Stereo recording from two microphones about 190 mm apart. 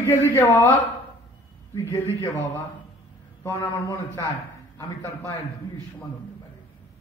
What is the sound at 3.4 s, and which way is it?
A man's voice, 15° left (ahead or behind).